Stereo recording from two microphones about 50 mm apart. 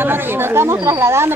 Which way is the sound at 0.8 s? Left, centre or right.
Right.